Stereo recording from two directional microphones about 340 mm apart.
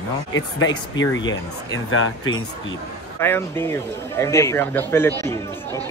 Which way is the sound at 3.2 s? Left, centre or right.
Centre.